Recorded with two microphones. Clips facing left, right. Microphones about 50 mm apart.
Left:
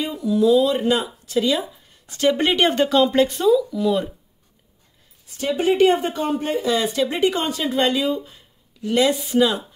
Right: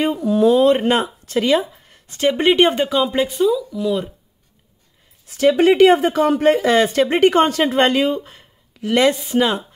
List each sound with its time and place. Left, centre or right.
0.0 s speech: right
2.0 s speech: right; by 4.1 s centre
5.3 s speech: right